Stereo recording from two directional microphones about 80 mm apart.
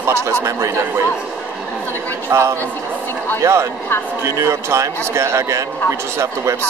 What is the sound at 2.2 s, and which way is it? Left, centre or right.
A man's voice, right.